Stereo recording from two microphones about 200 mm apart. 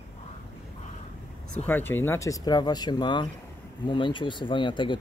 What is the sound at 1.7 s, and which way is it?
Speech, 10° left (ahead or behind).